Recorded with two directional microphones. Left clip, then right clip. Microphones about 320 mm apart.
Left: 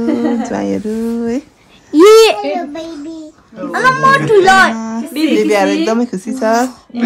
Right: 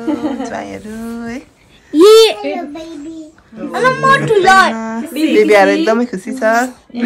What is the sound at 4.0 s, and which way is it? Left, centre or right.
Speech, left.